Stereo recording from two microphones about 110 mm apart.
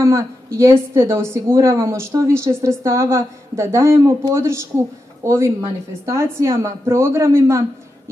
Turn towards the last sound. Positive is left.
turn(degrees=-25)  # may be behind; listen again after turning